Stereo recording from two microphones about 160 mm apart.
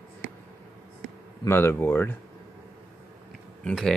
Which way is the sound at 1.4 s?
15° left (ahead or behind).